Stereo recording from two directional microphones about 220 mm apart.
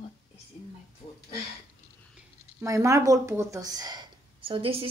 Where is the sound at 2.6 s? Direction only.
15° right (ahead or behind).